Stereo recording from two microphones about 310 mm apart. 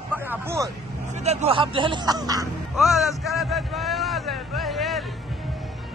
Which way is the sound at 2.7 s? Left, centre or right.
Centre.